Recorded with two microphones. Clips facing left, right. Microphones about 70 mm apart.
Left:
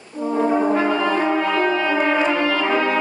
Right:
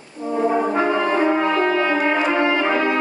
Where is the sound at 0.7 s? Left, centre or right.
Right.